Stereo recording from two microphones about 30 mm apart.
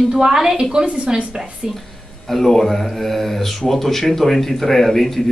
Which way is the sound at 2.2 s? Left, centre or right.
Centre.